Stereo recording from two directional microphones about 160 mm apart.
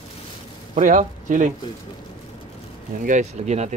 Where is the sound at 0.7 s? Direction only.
55° right (ahead or behind).